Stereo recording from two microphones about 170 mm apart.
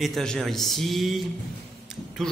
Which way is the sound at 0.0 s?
Centre (ahead or behind).